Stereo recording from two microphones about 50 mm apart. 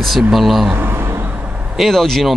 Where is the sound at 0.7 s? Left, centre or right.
Right.